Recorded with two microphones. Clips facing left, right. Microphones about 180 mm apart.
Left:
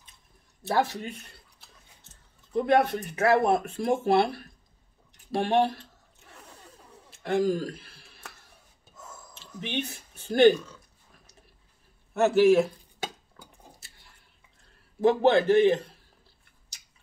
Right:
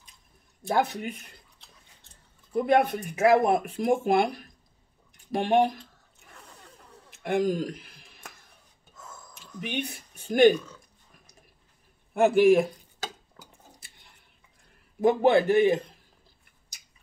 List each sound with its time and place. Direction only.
0.7 s speech: 15° right (ahead or behind)
2.5 s speech: 10° right (ahead or behind)
6.3 s a sound: 10° left (ahead or behind)
7.1 s a sound: 15° right (ahead or behind)
9.6 s speech: 10° right (ahead or behind)
12.1 s speech: 15° right (ahead or behind)
15.0 s speech: 10° right (ahead or behind)